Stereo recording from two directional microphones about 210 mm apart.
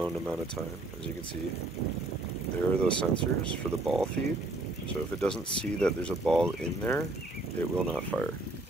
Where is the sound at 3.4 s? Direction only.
Centre (ahead or behind).